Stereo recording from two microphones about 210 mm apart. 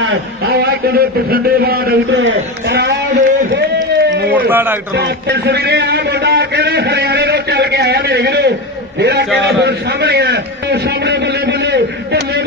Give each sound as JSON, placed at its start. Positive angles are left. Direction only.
{"t": 0.0, "sound": "a man's voice", "side_deg": -50}
{"t": 3.5, "sound": "a sound", "side_deg": -55}
{"t": 4.5, "sound": "speech", "side_deg": -10}
{"t": 4.9, "sound": "a man's voice", "side_deg": -50}